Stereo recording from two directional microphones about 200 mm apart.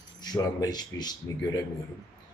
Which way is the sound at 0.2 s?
20° left (ahead or behind).